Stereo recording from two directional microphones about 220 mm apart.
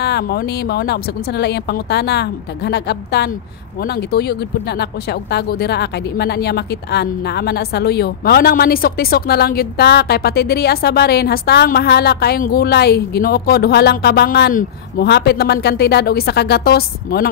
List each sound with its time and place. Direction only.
0.0 s speech: 45° left (ahead or behind)